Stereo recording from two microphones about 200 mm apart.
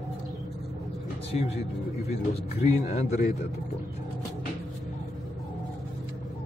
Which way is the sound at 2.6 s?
35° left (ahead or behind).